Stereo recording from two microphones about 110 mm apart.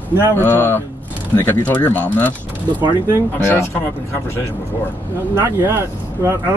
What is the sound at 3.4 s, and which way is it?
Speech, 20° left (ahead or behind).